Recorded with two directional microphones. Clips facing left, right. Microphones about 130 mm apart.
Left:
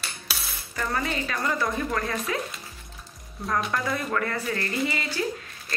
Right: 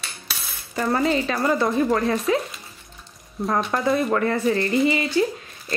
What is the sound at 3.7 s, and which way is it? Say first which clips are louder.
A woman's voice: right 7 dB; 30° right (ahead or behind).